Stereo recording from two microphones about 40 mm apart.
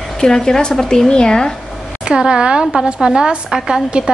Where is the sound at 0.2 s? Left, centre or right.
Centre.